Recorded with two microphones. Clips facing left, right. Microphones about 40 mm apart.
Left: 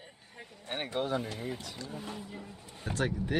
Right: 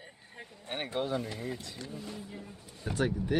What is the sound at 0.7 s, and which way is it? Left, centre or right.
Speech, centre.